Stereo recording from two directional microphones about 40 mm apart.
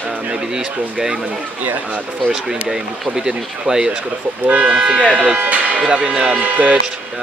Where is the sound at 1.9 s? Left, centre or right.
Right.